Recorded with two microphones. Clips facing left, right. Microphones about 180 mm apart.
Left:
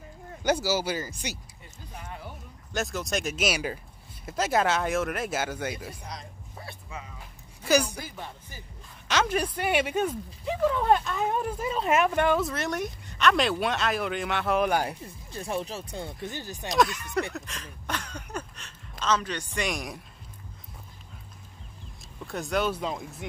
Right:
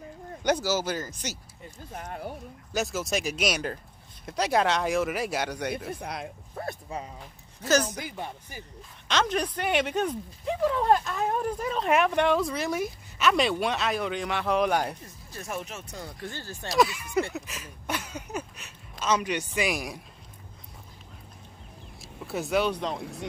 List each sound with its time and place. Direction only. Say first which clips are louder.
0.4 s speech: even; 5° left (ahead or behind)
2.0 s speech: right 5 dB; 55° right (ahead or behind)
2.7 s speech: right 1 dB; centre (ahead or behind)
5.9 s speech: right 6 dB; 60° right (ahead or behind)
6.7 s speech: right 4 dB; 35° right (ahead or behind)
7.6 s speech: left 1 dB; 10° left (ahead or behind)
8.0 s speech: right 3 dB; 15° right (ahead or behind)
9.0 s speech: even; 5° left (ahead or behind)
15.0 s speech: left 3 dB; 30° left (ahead or behind)
16.7 s speech: right 1 dB; centre (ahead or behind)
22.0 s speech: right 2 dB; 5° right (ahead or behind)
22.9 s speech: right 3 dB; 70° right (ahead or behind)